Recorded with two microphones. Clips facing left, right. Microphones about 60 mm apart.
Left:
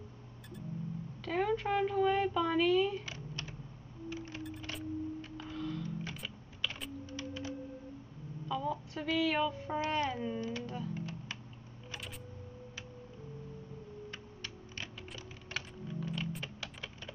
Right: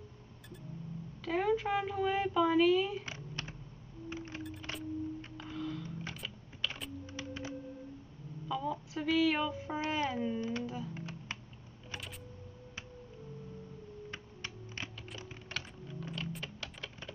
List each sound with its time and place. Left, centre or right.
1.2 s speech: centre
4.4 s music: centre
5.4 s typing: centre
7.2 s music: right
8.5 s speech: centre
11.0 s typing: right
14.1 s music: right
15.5 s typing: centre